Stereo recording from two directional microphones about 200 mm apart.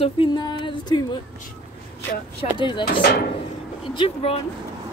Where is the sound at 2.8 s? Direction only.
55° left (ahead or behind).